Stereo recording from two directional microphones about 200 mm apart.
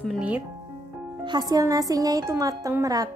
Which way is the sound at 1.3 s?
20° right (ahead or behind).